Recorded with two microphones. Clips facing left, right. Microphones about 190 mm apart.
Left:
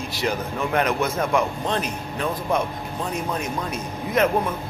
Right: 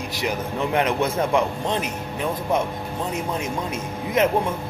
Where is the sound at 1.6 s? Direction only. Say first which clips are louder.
Even; 15° right (ahead or behind).